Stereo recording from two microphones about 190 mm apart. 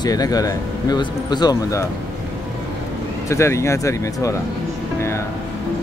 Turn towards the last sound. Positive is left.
turn(degrees=15)  # may be behind; listen again after turning